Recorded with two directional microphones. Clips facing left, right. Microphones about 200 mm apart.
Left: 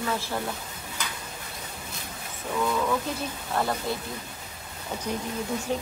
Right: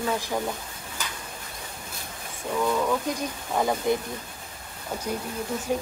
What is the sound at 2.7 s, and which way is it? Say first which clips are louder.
Speech: right 2 dB; 15° right (ahead or behind).